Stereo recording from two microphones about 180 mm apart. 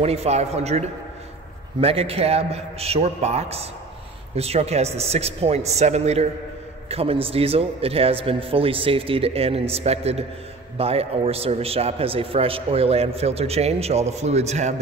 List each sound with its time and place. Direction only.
0.0 s a man's voice: 35° right (ahead or behind)